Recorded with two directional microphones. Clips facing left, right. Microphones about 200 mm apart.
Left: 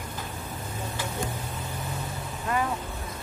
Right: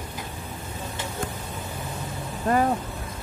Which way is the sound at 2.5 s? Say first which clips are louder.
Right 6 dB; 40° right (ahead or behind).